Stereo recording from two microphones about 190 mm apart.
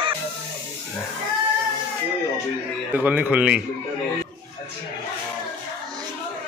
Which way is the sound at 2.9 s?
10° right (ahead or behind).